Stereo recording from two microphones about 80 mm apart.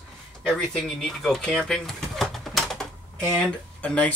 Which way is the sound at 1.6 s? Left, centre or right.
Centre.